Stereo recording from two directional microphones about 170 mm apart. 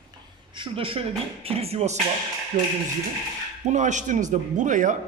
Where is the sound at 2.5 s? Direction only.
50° right (ahead or behind).